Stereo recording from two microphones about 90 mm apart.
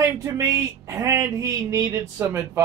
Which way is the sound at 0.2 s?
35° right (ahead or behind).